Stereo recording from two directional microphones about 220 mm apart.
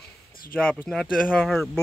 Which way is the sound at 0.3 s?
40° left (ahead or behind).